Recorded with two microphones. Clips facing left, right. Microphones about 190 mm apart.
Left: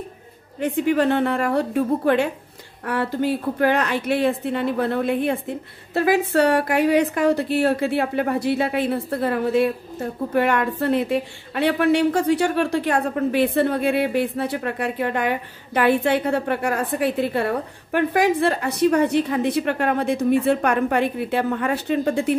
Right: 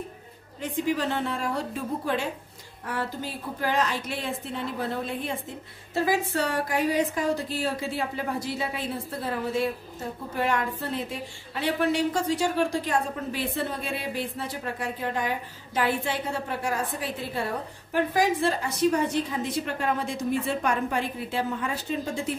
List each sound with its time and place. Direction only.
0.6 s speech: 60° left (ahead or behind)